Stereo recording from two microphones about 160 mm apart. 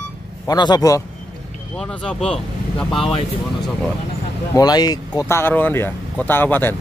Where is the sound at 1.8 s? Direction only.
5° left (ahead or behind).